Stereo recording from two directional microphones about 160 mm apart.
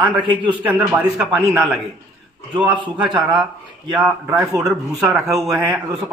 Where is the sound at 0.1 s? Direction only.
30° right (ahead or behind).